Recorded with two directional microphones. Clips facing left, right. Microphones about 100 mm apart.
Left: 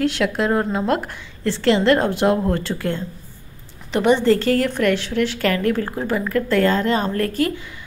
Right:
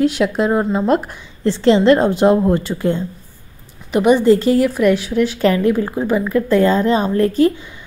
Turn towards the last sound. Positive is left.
turn(degrees=-20)  # may be behind; listen again after turning